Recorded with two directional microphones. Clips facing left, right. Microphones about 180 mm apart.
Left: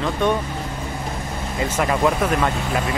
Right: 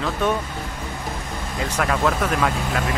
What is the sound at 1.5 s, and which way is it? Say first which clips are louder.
Speech: left 2 dB; centre (ahead or behind).